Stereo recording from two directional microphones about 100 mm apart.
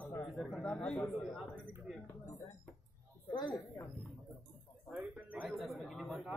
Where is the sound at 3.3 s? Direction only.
50° left (ahead or behind).